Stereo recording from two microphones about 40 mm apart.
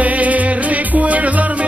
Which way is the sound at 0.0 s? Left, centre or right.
Right.